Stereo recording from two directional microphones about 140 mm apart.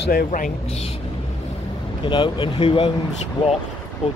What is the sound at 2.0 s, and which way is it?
Speech, 35° left (ahead or behind).